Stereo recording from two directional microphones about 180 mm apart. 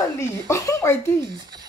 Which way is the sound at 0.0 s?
15° left (ahead or behind).